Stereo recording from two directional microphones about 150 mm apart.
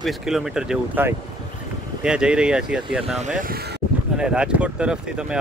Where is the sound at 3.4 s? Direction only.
85° right.